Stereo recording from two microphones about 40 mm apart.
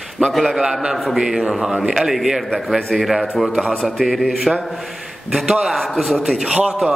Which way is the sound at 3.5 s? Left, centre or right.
Centre.